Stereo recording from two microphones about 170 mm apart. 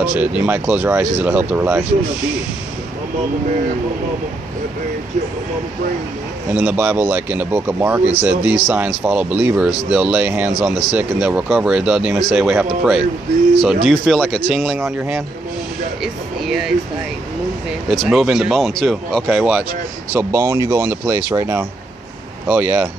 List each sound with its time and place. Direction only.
0.0 s speech: 5° right (ahead or behind)
6.5 s speech: 10° right (ahead or behind)
16.0 s a sound: centre (ahead or behind)
17.8 s speech: centre (ahead or behind)